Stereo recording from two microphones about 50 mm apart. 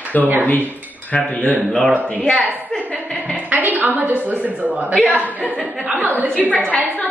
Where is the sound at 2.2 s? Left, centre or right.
Left.